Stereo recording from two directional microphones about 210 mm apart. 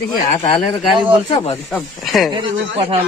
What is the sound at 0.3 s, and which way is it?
Speech, 30° left (ahead or behind).